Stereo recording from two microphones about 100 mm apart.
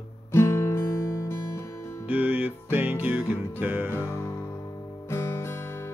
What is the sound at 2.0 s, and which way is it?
Music, 15° right (ahead or behind).